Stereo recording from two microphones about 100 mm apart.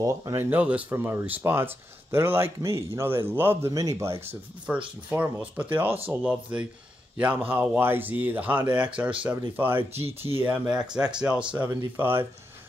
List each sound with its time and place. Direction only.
0.0 s speech: 30° right (ahead or behind)
0.5 s speech: 15° right (ahead or behind)
3.7 s speech: 35° right (ahead or behind)
4.7 s speech: 20° right (ahead or behind)
12.0 s speech: 20° right (ahead or behind)